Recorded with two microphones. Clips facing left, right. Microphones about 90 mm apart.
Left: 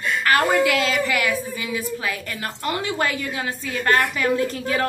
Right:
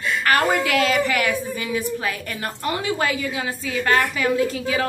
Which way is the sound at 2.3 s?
20° right (ahead or behind).